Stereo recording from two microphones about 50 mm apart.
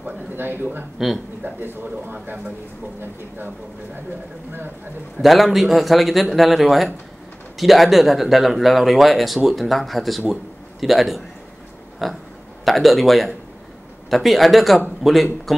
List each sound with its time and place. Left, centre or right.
0.4 s speech: right
0.9 s a man's voice: centre
1.4 s speech: right
2.2 s speech: right
3.0 s speech: right
5.2 s a man's voice: centre